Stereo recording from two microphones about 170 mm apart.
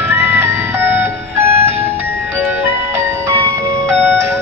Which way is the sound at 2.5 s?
15° right (ahead or behind).